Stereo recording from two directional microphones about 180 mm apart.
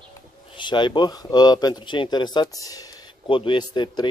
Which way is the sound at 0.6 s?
25° left (ahead or behind).